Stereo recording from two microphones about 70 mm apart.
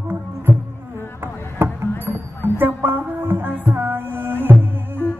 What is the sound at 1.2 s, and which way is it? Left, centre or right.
Music, right.